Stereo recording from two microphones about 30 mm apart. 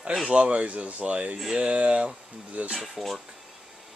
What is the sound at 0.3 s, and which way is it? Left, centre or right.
Speech, right.